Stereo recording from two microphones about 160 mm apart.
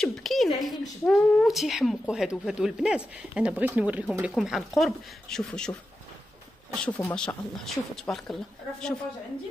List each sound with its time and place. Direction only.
0.0 s a woman's voice: centre (ahead or behind)
6.7 s a woman's voice: 5° left (ahead or behind)